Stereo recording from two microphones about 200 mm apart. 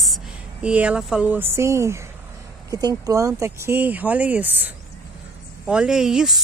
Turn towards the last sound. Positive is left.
turn(degrees=0)  # may be behind; listen again after turning